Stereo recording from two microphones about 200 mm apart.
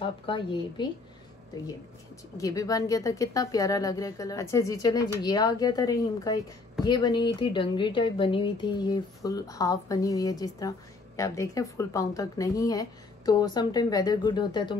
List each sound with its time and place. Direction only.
0.0 s a woman's voice: 25° left (ahead or behind)
2.3 s a woman's voice: 15° left (ahead or behind)